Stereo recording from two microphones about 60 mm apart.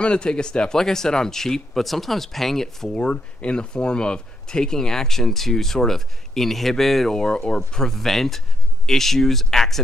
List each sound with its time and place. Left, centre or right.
0.0 s speech: centre
2.9 s speech: centre